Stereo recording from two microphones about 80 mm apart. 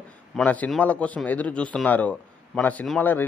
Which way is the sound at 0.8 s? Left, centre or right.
Centre.